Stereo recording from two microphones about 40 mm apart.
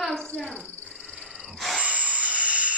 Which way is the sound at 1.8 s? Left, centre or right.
Right.